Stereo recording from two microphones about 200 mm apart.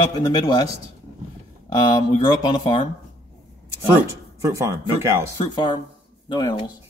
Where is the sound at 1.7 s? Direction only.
20° left (ahead or behind).